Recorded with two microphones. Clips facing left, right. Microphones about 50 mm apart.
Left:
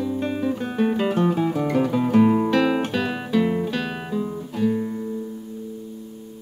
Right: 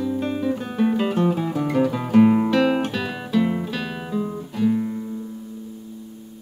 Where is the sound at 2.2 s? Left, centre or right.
Centre.